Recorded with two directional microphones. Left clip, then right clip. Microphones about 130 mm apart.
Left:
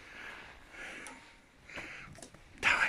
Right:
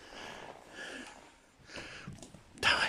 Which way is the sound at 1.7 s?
15° right (ahead or behind).